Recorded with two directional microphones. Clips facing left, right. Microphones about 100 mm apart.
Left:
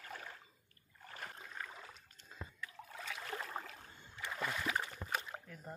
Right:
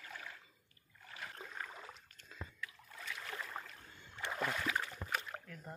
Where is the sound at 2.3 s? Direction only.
30° left (ahead or behind).